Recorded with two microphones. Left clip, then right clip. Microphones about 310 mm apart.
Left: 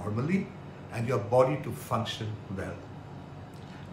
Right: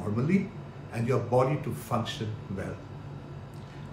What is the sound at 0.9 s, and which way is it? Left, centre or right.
A man's voice, centre.